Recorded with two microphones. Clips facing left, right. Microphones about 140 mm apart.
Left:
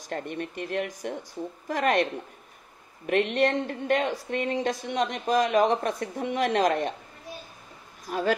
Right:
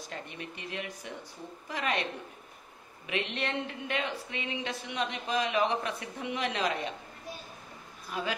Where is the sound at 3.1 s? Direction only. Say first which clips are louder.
Left 10 dB; 50° left (ahead or behind).